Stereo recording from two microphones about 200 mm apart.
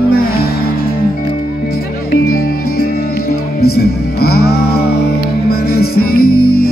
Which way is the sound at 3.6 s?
50° left (ahead or behind).